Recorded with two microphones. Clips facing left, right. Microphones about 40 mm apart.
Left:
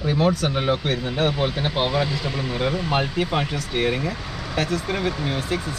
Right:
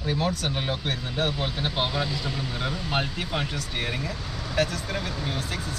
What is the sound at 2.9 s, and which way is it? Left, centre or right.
Speech, left.